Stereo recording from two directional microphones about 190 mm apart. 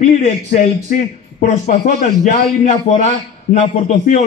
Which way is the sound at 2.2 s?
40° left (ahead or behind).